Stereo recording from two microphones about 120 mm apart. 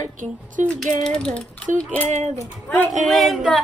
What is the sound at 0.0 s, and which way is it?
Speech, 90° right.